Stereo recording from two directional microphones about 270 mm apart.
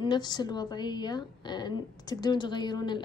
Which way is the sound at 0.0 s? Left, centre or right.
Centre.